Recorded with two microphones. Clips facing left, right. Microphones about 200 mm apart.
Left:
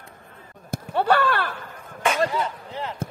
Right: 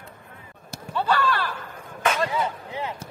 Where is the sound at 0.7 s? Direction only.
60° left (ahead or behind).